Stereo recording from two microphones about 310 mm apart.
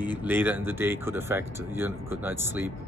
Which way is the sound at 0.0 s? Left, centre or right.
Centre.